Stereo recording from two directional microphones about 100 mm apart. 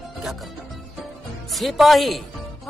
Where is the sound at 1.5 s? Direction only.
Centre (ahead or behind).